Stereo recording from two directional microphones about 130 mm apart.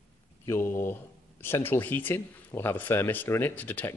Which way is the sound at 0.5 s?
20° left (ahead or behind).